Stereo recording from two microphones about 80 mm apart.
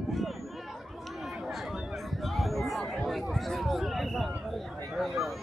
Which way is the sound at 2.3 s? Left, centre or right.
Centre.